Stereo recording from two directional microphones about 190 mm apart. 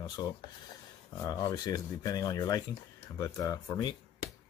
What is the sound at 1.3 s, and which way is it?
Speech, 20° left (ahead or behind).